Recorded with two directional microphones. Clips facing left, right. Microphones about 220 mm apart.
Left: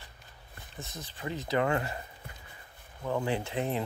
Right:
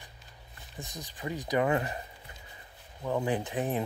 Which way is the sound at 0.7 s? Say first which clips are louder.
Right 1 dB; 15° right (ahead or behind).